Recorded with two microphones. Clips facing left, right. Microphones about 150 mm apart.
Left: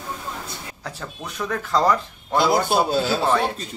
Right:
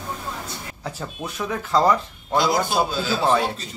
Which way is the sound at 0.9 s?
5° right (ahead or behind).